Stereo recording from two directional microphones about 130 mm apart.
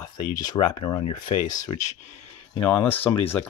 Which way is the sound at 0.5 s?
35° left (ahead or behind).